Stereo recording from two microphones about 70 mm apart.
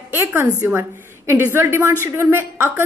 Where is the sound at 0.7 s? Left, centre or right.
Right.